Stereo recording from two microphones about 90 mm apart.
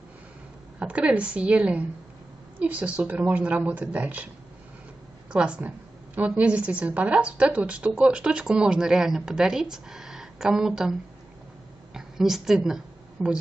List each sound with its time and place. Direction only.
0.7 s a woman's voice: 15° right (ahead or behind)
5.3 s a woman's voice: 10° right (ahead or behind)
11.9 s a sound: 5° right (ahead or behind)